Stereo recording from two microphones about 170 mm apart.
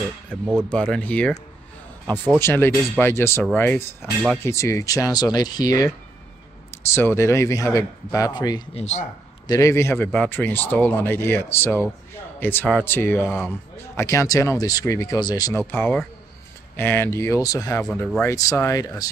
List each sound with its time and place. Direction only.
0.7 s speech: 5° left (ahead or behind)
2.4 s speech: 15° left (ahead or behind)
6.9 s speech: 15° left (ahead or behind)
8.7 s speech: 40° left (ahead or behind)
9.5 s speech: 20° left (ahead or behind)